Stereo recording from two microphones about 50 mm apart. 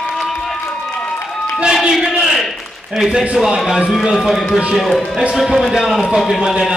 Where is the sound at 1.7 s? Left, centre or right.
Centre.